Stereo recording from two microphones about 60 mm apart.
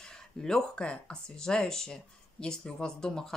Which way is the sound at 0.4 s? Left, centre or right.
Centre.